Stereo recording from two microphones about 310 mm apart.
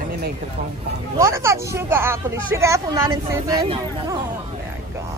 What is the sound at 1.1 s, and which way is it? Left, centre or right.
Speech, centre.